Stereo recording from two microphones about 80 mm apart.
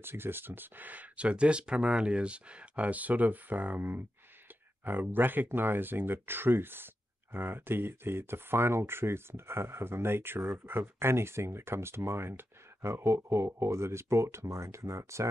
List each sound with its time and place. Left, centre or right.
0.0 s speech: right